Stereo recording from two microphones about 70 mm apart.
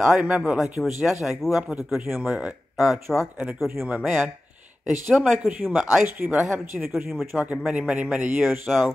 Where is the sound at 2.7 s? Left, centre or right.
Centre.